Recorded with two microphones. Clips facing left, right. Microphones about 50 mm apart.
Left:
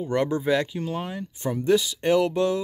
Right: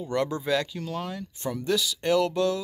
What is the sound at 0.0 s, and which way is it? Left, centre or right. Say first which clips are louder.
Speech: left 4 dB; left.